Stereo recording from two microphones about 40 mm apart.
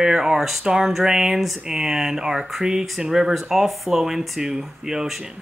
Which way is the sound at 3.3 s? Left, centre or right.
Centre.